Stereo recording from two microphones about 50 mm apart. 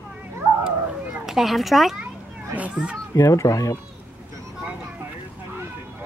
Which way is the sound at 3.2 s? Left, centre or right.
Left.